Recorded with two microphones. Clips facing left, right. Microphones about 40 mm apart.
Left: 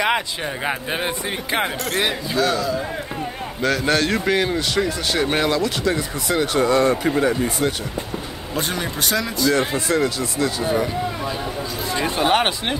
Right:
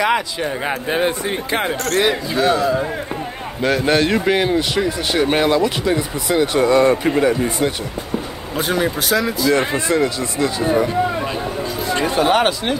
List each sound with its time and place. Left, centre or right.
0.0 s speech: centre
0.7 s speech: centre
2.3 s speech: right
3.6 s speech: centre
8.5 s speech: centre
9.5 s speech: right
12.3 s speech: centre